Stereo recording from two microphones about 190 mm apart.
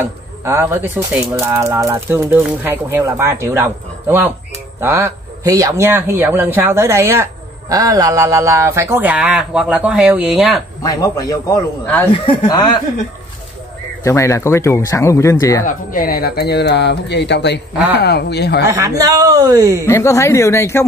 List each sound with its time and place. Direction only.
0.0 s speech: 10° right (ahead or behind)
10.8 s a man's voice: 20° left (ahead or behind)
14.0 s a man's voice: 15° left (ahead or behind)
15.6 s speech: 50° left (ahead or behind)
18.7 s a man's voice: 15° right (ahead or behind)
19.9 s a man's voice: 15° left (ahead or behind)